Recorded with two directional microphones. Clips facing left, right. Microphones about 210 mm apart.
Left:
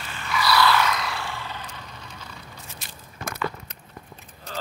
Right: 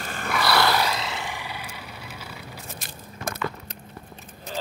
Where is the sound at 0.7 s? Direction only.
30° right (ahead or behind); by 1.8 s 10° right (ahead or behind).